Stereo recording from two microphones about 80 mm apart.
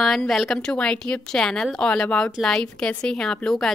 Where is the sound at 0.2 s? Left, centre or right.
Centre.